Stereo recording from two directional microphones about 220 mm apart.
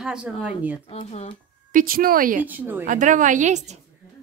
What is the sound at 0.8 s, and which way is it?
Speech, 25° left (ahead or behind).